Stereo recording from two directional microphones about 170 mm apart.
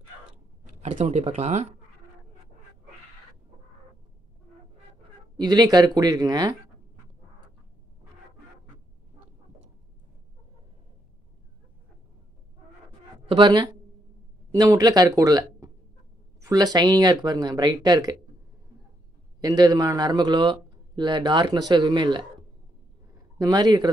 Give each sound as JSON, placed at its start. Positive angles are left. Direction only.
{"t": 0.8, "sound": "speech", "side_deg": -45}
{"t": 5.4, "sound": "a man's voice", "side_deg": -25}
{"t": 13.3, "sound": "a man's voice", "side_deg": -25}
{"t": 19.4, "sound": "a man's voice", "side_deg": -20}